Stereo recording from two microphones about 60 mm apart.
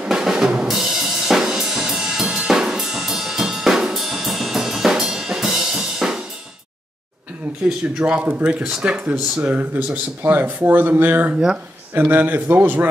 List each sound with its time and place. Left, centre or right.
0.0 s drum: centre
8.0 s speech: right